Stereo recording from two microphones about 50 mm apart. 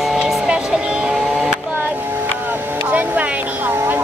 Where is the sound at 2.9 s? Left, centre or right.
Right.